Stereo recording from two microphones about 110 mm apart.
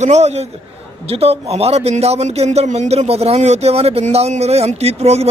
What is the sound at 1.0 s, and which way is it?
A man's voice, 60° right (ahead or behind).